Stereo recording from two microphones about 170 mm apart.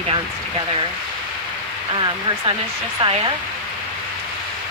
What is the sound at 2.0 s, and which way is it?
Speech, 25° right (ahead or behind).